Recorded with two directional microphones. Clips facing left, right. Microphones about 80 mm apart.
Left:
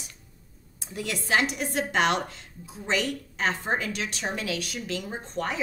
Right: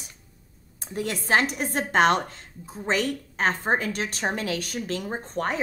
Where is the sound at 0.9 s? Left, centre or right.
Right.